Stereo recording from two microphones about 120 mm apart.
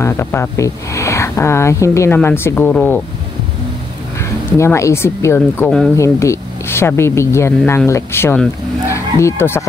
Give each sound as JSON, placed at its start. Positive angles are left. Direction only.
{"t": 0.0, "sound": "speech", "side_deg": 20}
{"t": 4.2, "sound": "speech", "side_deg": 20}